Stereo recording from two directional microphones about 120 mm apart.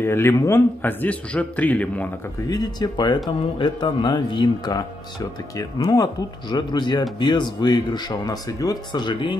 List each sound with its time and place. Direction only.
0.0 s a man's voice: 20° left (ahead or behind)
2.4 s speech: 35° left (ahead or behind)